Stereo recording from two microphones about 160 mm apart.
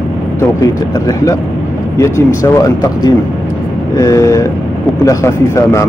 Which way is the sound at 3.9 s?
20° left (ahead or behind).